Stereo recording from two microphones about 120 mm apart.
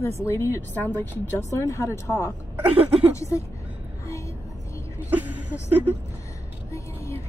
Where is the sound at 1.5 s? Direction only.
25° left (ahead or behind).